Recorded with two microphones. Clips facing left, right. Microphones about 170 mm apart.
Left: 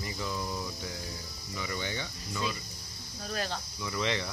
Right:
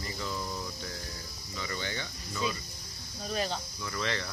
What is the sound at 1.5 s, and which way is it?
Speech, 10° left (ahead or behind).